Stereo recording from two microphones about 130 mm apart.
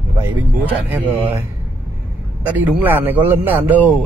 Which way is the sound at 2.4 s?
10° right (ahead or behind).